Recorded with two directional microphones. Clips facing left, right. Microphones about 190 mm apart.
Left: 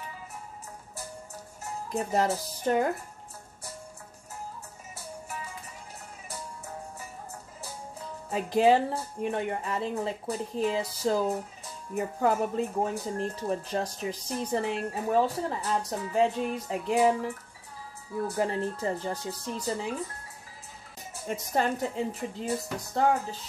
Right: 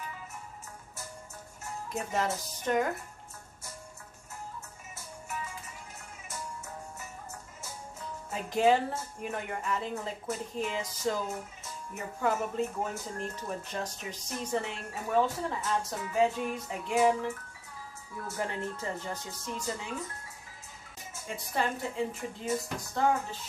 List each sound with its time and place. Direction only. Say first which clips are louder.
1.9 s speech: left 5 dB; 35° left (ahead or behind)
8.3 s speech: left 3 dB; 35° left (ahead or behind)
18.2 s speech: left 6 dB; 35° left (ahead or behind)
21.1 s speech: left 6 dB; 40° left (ahead or behind)